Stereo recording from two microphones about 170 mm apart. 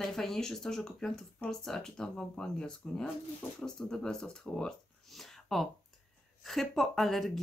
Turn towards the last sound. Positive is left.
turn(degrees=0)  # may be behind; listen again after turning